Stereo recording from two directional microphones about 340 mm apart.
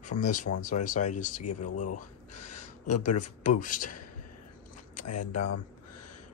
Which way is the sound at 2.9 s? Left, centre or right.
Left.